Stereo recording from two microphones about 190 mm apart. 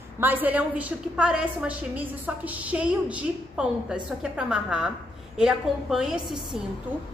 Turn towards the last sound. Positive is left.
turn(degrees=-5)  # may be behind; listen again after turning